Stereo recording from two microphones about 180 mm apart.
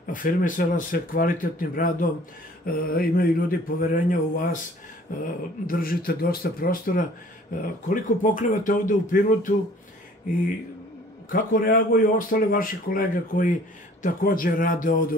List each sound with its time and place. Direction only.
0.0 s a man's voice: 50° left (ahead or behind)
11.2 s speech: 50° left (ahead or behind)